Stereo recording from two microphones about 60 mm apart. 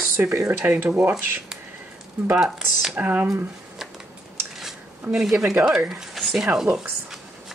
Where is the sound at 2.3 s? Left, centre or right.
Centre.